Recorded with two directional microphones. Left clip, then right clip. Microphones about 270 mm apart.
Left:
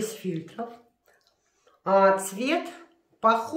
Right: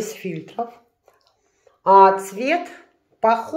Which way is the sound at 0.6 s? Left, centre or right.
Right.